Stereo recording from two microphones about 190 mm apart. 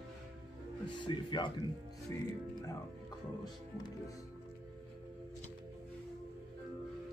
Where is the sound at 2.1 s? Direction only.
15° left (ahead or behind).